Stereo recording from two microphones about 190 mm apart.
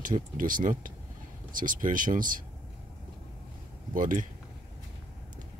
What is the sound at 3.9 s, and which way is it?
Speech, 45° right (ahead or behind).